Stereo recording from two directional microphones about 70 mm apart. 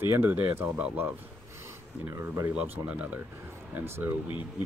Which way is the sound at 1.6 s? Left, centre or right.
Right.